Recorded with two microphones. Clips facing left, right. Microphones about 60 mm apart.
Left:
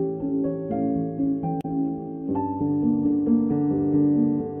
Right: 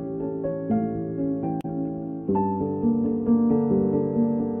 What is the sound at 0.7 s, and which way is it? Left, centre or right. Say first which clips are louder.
Music: left 1 dB; right.